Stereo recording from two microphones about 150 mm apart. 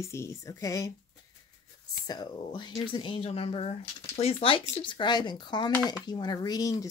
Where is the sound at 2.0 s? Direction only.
30° left (ahead or behind).